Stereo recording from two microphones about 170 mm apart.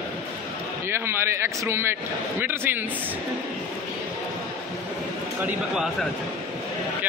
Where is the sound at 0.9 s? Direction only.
15° right (ahead or behind).